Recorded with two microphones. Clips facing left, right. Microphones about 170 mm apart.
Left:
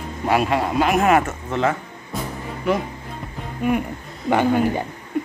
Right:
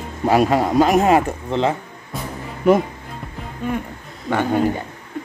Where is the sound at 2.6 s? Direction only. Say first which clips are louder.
Right 7 dB; 45° right (ahead or behind).